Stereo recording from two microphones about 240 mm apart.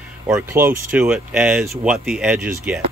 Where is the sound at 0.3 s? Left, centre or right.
Centre.